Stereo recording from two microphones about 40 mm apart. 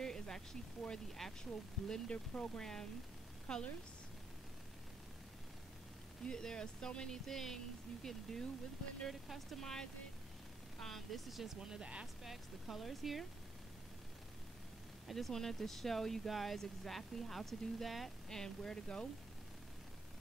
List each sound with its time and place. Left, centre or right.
0.0 s speech: centre
2.0 s speech: left
6.2 s speech: centre
9.6 s speech: centre
10.9 s speech: centre
11.6 s speech: right
12.2 s speech: centre
15.0 s speech: centre
18.3 s speech: centre